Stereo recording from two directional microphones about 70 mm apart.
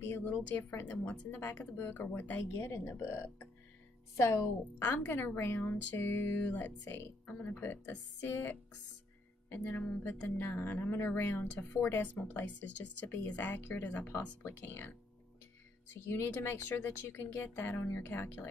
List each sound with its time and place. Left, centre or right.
0.0 s a woman's voice: left
2.5 s speech: left
4.3 s a woman's voice: left
12.0 s a woman's voice: left
16.1 s a woman's voice: left